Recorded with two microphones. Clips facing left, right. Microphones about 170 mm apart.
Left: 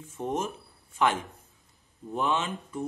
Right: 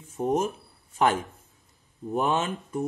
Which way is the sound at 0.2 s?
40° right (ahead or behind).